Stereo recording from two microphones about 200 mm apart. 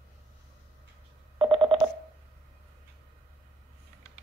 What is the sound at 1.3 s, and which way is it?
Telephone dialing, 25° right (ahead or behind).